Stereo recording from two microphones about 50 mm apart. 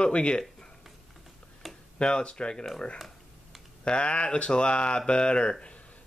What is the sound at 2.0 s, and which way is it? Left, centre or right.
Speech, centre.